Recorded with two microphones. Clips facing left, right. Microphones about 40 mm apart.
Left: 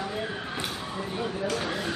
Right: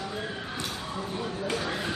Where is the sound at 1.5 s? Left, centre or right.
Centre.